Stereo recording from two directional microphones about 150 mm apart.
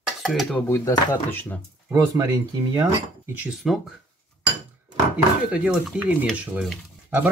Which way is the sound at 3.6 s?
Centre (ahead or behind).